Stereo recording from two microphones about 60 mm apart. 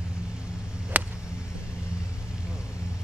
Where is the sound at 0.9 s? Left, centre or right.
Right.